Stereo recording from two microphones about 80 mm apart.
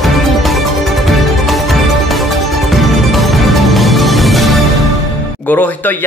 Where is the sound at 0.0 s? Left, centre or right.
Centre.